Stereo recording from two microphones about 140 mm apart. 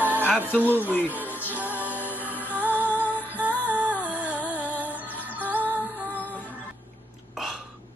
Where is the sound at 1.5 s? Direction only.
10° right (ahead or behind).